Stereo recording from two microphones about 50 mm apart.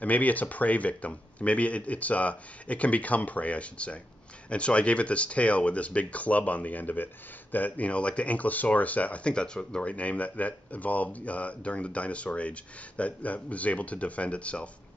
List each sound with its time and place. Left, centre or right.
0.0 s speech: left; by 9.8 s centre
9.8 s speech: left